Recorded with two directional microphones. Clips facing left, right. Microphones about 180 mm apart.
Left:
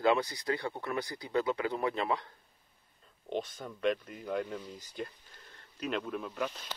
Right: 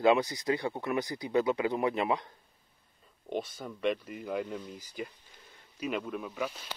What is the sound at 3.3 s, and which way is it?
A man's voice, centre (ahead or behind).